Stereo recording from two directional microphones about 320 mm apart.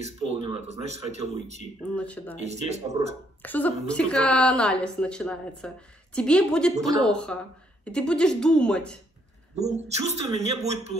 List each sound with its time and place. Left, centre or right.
0.0 s speech: centre
2.0 s a woman's voice: centre
2.4 s speech: centre
3.4 s a woman's voice: centre
9.6 s speech: right